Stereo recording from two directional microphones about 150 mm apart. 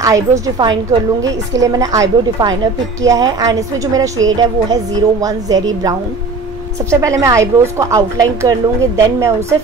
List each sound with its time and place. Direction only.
0.0 s a woman's voice: 20° right (ahead or behind)